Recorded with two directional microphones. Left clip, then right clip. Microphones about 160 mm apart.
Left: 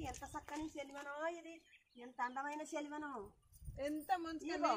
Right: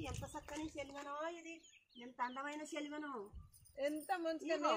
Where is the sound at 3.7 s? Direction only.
65° left (ahead or behind).